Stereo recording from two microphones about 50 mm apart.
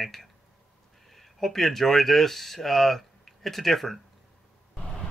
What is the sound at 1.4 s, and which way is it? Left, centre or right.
Speech, centre.